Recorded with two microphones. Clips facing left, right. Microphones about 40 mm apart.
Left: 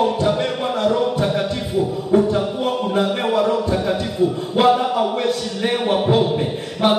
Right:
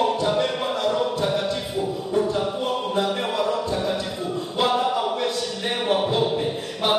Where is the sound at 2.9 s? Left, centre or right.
Centre.